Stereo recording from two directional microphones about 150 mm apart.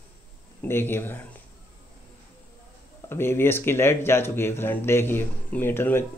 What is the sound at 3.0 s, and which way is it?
Speech, 15° left (ahead or behind).